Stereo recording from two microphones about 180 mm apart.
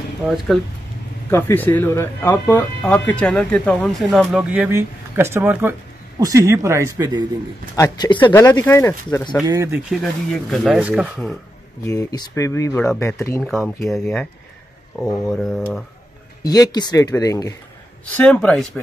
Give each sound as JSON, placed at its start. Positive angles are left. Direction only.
{"t": 0.5, "sound": "speech", "side_deg": 0}
{"t": 7.7, "sound": "speech", "side_deg": 20}
{"t": 8.3, "sound": "speech", "side_deg": 15}
{"t": 9.5, "sound": "speech", "side_deg": -15}
{"t": 9.8, "sound": "speech", "side_deg": 0}
{"t": 11.8, "sound": "speech", "side_deg": 15}
{"t": 13.4, "sound": "speech", "side_deg": 0}
{"t": 15.3, "sound": "speech", "side_deg": 5}
{"t": 16.4, "sound": "speech", "side_deg": 20}
{"t": 18.0, "sound": "speech", "side_deg": 5}